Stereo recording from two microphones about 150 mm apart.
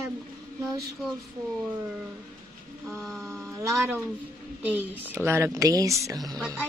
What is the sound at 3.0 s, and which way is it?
Speech, centre (ahead or behind).